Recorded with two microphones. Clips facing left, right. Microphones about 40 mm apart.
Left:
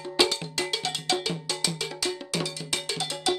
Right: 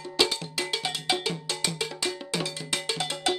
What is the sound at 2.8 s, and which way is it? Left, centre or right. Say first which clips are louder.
Cowbell: right 1 dB; right.